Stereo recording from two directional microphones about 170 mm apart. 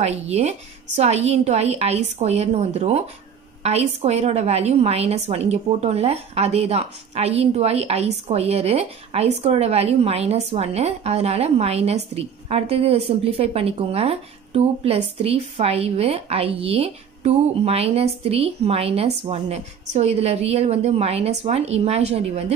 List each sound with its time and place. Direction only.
0.0 s a woman's voice: 40° right (ahead or behind)